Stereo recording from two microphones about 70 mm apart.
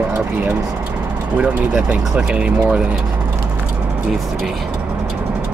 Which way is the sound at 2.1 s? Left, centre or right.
Centre.